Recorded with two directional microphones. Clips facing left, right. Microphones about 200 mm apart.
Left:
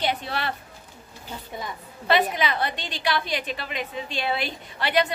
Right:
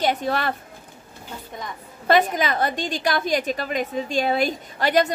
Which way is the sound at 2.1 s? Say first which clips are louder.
Right 3 dB; 45° right (ahead or behind).